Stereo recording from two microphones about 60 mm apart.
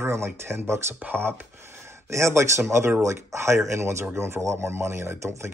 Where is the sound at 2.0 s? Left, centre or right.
Right.